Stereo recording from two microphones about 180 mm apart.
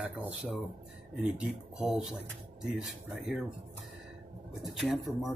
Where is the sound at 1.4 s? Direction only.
5° right (ahead or behind).